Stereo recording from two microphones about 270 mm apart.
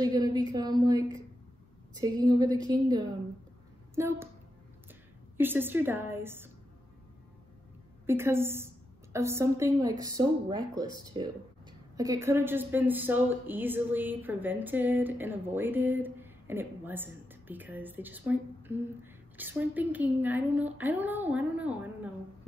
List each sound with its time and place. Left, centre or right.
0.0 s a woman's voice: centre
5.4 s a woman's voice: centre
8.1 s a woman's voice: centre